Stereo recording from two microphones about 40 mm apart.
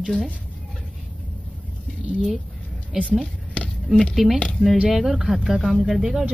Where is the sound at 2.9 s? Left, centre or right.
Centre.